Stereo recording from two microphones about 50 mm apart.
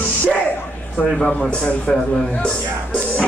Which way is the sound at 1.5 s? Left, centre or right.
Centre.